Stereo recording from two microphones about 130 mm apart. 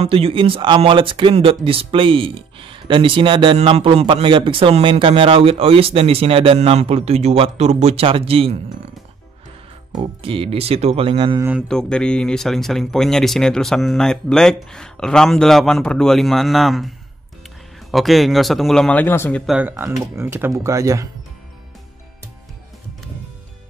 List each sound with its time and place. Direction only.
0.0 s a man's voice: 45° right (ahead or behind)
10.2 s a man's voice: 45° right (ahead or behind)
11.6 s speech: 5° left (ahead or behind)
17.9 s speech: centre (ahead or behind); by 19.4 s 15° left (ahead or behind)
19.4 s speech: 5° right (ahead or behind)
19.7 s speech: 20° right (ahead or behind)